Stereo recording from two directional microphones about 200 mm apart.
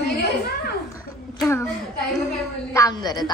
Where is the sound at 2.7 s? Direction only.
15° left (ahead or behind).